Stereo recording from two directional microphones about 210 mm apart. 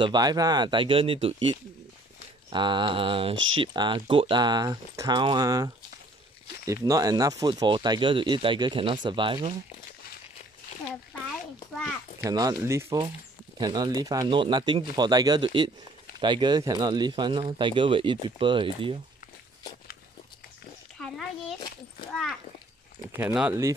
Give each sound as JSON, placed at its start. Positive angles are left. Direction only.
{"t": 0.0, "sound": "speech", "side_deg": -20}
{"t": 3.3, "sound": "speech", "side_deg": -70}
{"t": 3.6, "sound": "speech", "side_deg": -20}
{"t": 12.2, "sound": "speech", "side_deg": -15}
{"t": 21.0, "sound": "a sound", "side_deg": 0}
{"t": 22.1, "sound": "a child's voice", "side_deg": 0}